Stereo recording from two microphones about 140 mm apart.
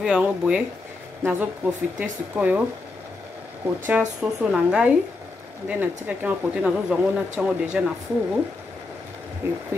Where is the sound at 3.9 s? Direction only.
5° right (ahead or behind).